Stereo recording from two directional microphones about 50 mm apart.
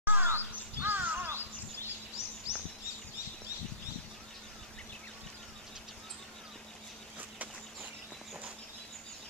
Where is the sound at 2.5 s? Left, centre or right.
Centre.